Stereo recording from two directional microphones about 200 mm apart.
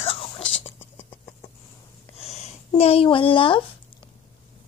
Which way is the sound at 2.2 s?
30° left (ahead or behind).